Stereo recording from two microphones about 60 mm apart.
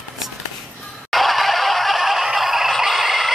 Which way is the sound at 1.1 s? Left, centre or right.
Centre.